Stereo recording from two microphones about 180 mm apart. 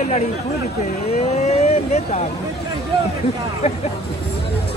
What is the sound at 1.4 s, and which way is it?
Vehicle, 40° left (ahead or behind).